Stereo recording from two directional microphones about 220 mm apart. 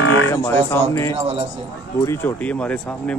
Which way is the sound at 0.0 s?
65° left (ahead or behind).